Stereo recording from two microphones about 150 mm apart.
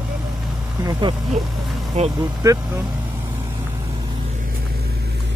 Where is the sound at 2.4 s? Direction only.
15° right (ahead or behind).